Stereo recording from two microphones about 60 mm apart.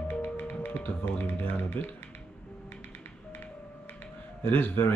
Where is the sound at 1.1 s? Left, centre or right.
Left.